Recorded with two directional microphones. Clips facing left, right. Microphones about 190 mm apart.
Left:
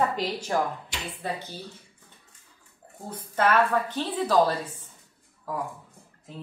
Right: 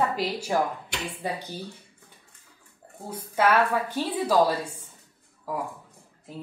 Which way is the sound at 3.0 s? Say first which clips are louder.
Right 1 dB; 10° right (ahead or behind).